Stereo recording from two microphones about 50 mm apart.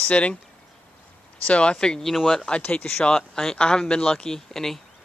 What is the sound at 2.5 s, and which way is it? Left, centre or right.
Speech, left.